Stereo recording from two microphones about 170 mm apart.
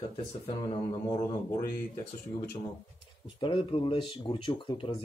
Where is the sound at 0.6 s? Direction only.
30° left (ahead or behind).